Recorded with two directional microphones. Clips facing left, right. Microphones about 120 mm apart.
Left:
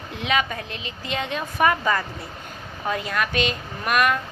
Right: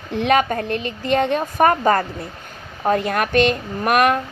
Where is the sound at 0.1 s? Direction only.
50° right (ahead or behind).